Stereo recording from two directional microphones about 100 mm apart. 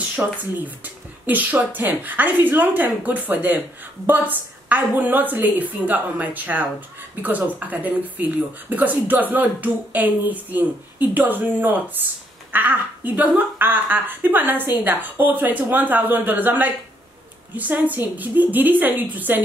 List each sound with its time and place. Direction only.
0.1 s a woman's voice: 15° right (ahead or behind)